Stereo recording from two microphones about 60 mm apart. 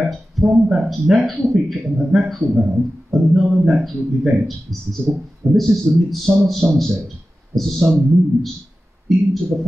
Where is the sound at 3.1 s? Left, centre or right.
Centre.